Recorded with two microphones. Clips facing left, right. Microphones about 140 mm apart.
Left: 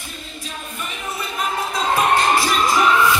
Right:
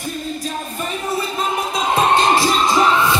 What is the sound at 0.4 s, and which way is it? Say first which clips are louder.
Music: right 6 dB; 40° right (ahead or behind).